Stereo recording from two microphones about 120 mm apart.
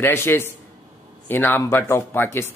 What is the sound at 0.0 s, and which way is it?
Speech, 20° left (ahead or behind).